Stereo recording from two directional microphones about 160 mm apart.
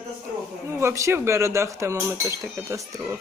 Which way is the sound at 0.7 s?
15° right (ahead or behind).